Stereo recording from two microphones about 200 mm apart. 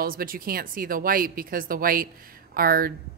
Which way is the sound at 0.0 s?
45° right (ahead or behind).